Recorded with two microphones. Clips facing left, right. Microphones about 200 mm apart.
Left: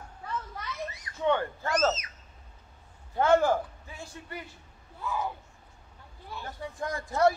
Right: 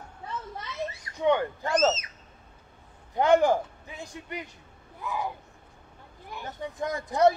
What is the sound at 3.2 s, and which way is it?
A man's voice, 15° right (ahead or behind).